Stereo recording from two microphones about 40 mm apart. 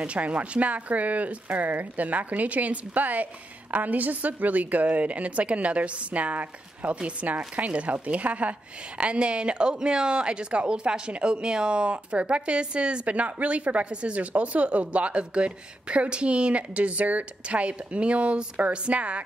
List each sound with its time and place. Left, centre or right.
0.0 s a woman's voice: right